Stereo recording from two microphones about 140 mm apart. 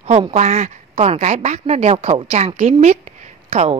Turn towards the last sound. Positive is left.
turn(degrees=-50)  # may be behind; listen again after turning